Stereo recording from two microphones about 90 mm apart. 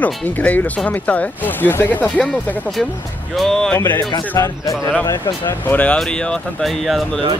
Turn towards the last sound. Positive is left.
turn(degrees=10)  # may be behind; listen again after turning